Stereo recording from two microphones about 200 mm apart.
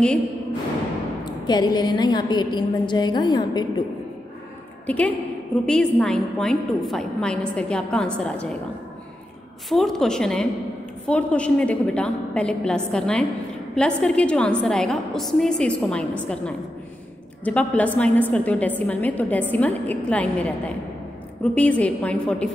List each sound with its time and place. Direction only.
1.2 s a woman's voice: 20° left (ahead or behind)
4.8 s a woman's voice: 5° left (ahead or behind)
9.7 s a woman's voice: centre (ahead or behind)